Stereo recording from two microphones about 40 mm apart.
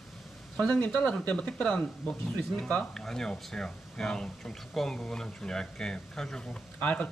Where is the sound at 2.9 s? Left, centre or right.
Centre.